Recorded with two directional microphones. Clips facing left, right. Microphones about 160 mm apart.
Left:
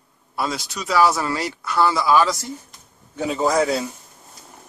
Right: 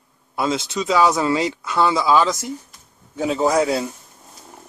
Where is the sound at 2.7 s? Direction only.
5° right (ahead or behind).